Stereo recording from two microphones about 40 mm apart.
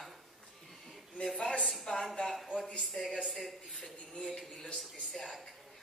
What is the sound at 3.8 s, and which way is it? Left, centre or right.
Speech, centre.